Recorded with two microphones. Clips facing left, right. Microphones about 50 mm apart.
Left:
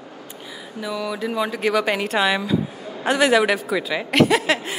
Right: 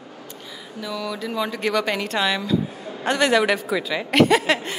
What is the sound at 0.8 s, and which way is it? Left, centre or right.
A woman's voice, centre.